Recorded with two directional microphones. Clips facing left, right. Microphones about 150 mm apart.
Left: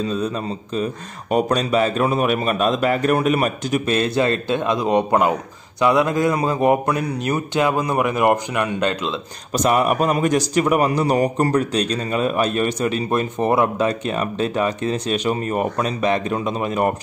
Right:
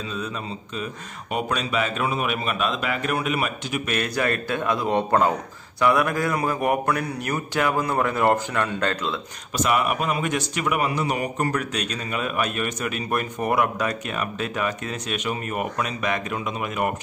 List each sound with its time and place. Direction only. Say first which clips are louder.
0.0 s a man's voice: left 8 dB; 35° left (ahead or behind)
1.3 s a man's voice: left 7 dB; 40° left (ahead or behind)
3.9 s a man's voice: left 5 dB; 25° left (ahead or behind)
9.5 s a man's voice: left 5 dB; 40° left (ahead or behind)